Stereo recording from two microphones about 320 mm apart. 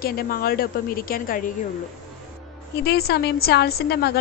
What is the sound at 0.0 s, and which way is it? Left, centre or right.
A woman's voice, left.